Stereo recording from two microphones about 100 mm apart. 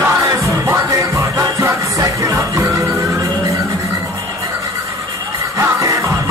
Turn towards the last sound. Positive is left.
turn(degrees=-30)  # may be behind; listen again after turning